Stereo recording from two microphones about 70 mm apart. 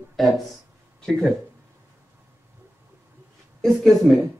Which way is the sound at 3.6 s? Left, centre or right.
Centre.